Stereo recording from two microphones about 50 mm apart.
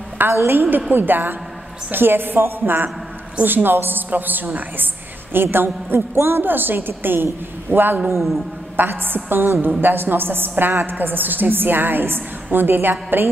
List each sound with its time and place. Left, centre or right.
0.3 s a woman's voice: right